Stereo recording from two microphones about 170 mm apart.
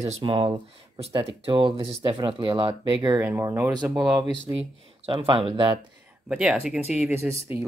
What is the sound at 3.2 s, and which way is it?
Speech, 15° right (ahead or behind).